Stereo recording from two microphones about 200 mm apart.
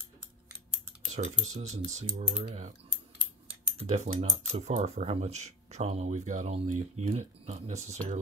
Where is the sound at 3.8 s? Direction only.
35° right (ahead or behind).